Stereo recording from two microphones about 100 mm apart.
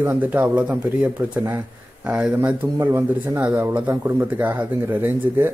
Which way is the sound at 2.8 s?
30° right (ahead or behind).